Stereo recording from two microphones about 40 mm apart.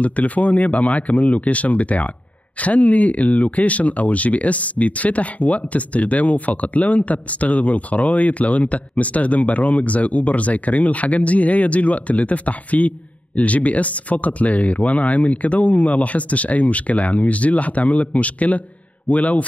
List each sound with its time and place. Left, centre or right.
0.0 s speech: left
0.7 s speech: left